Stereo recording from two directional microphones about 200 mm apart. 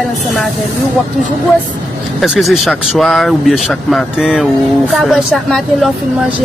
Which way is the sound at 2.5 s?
Centre (ahead or behind).